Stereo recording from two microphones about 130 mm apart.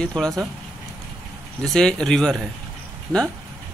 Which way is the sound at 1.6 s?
5° left (ahead or behind).